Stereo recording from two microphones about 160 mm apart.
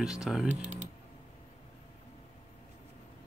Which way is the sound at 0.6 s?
50° right (ahead or behind).